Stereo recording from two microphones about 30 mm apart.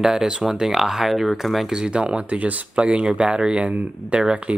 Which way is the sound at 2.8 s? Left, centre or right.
Right.